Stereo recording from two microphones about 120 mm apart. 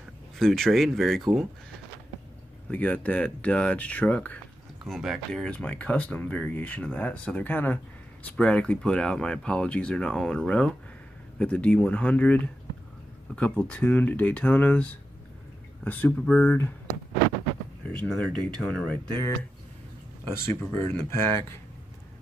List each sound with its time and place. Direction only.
0.4 s speech: centre (ahead or behind)
2.7 s speech: 15° left (ahead or behind)
13.4 s speech: 10° left (ahead or behind)
17.9 s speech: 10° left (ahead or behind)
20.2 s speech: 20° left (ahead or behind)